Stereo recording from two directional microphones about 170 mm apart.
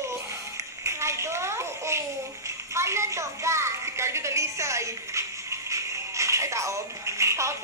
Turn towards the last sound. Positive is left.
turn(degrees=-15)  # may be behind; listen again after turning